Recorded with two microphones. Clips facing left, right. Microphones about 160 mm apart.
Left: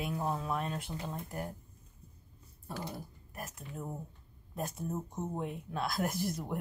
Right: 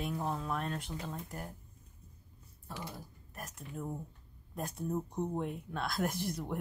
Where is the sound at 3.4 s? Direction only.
5° left (ahead or behind).